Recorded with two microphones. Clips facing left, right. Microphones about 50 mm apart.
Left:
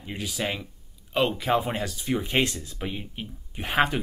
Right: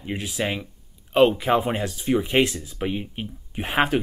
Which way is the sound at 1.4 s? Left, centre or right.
Centre.